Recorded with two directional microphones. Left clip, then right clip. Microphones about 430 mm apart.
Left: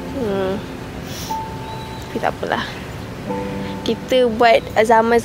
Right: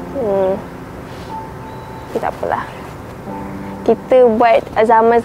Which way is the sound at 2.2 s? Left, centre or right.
Right.